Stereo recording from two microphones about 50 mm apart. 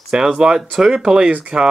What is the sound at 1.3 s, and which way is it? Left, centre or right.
Speech, right.